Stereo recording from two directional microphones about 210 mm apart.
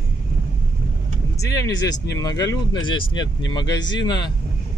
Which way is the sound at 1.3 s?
15° left (ahead or behind).